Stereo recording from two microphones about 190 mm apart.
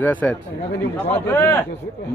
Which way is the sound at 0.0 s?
10° left (ahead or behind).